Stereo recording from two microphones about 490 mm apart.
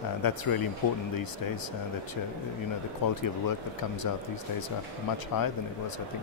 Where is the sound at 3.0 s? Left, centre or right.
Left.